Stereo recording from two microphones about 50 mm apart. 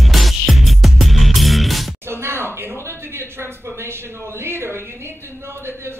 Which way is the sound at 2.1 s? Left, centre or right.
Right.